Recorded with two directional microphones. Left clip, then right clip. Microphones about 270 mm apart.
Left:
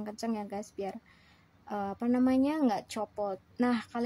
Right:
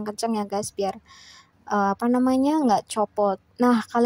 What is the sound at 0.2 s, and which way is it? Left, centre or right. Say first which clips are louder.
Speech: right 11 dB; right.